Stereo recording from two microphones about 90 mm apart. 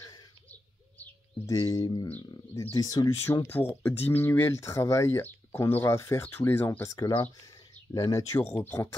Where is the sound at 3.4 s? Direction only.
20° left (ahead or behind).